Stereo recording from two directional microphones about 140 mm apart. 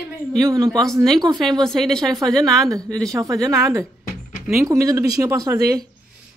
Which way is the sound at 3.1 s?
25° right (ahead or behind).